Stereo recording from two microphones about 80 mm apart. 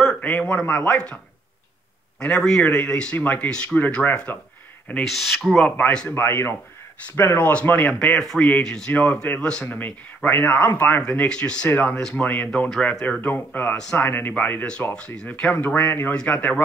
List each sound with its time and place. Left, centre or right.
0.1 s speech: centre
5.0 s speech: centre
6.1 s speech: left; by 8.2 s centre
8.2 s speech: centre
9.7 s speech: left
11.0 s speech: centre
11.7 s speech: left